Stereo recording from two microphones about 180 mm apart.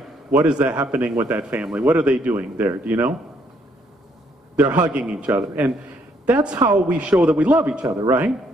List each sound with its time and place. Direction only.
0.7 s speech: 10° right (ahead or behind)
4.6 s a man's voice: 20° right (ahead or behind)
4.9 s speech: 5° right (ahead or behind)